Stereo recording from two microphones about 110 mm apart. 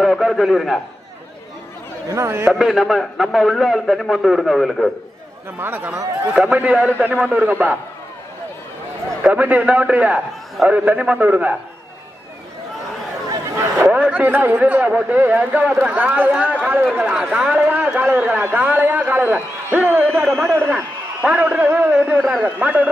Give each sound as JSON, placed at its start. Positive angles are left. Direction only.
{"t": 0.0, "sound": "a man's voice", "side_deg": 0}
{"t": 2.1, "sound": "a man's voice", "side_deg": -25}
{"t": 2.5, "sound": "a man's voice", "side_deg": 0}
{"t": 5.6, "sound": "a man's voice", "side_deg": -20}
{"t": 9.2, "sound": "a man's voice", "side_deg": -15}
{"t": 13.7, "sound": "a man's voice", "side_deg": -15}
{"t": 16.5, "sound": "a man's voice", "side_deg": -5}
{"t": 20.0, "sound": "carnatic music", "side_deg": 5}
{"t": 20.4, "sound": "a man's voice", "side_deg": -20}